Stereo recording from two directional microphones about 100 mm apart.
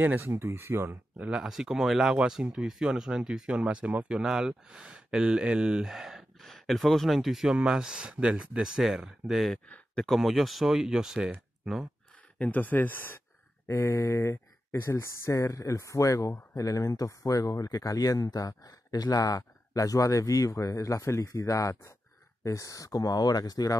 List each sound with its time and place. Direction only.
0.0 s speech: 20° right (ahead or behind)
1.4 s speech: 5° right (ahead or behind)
12.4 s speech: 15° left (ahead or behind); by 23.8 s 40° left (ahead or behind)